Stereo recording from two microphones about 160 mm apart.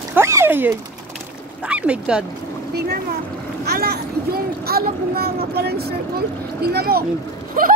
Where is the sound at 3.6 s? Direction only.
80° right.